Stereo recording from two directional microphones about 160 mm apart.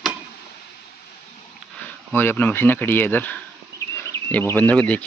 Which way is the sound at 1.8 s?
10° left (ahead or behind).